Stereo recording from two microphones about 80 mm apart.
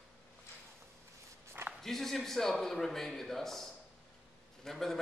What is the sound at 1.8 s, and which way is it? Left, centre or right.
A man's voice, centre.